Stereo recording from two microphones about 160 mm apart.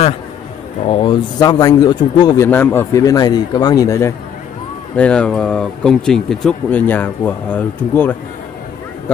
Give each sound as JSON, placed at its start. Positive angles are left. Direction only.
{"t": 0.8, "sound": "a man's voice", "side_deg": 35}
{"t": 2.4, "sound": "a man's voice", "side_deg": 15}
{"t": 4.9, "sound": "speech", "side_deg": 5}